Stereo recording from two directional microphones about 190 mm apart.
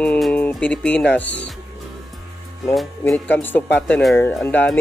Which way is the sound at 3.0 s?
10° left (ahead or behind).